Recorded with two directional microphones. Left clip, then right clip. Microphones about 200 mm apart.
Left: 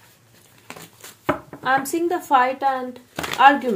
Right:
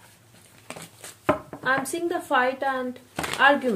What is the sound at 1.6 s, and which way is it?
Speech, 30° left (ahead or behind).